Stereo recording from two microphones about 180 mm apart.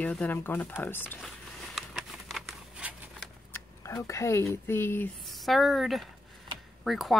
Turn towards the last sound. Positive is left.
turn(degrees=0)  # may be behind; listen again after turning